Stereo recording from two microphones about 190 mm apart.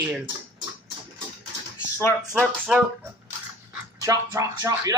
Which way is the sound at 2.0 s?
10° left (ahead or behind).